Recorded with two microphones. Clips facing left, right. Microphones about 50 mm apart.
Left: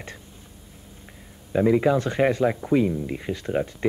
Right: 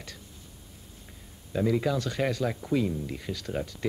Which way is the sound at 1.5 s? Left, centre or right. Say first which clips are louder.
Left 7 dB; left.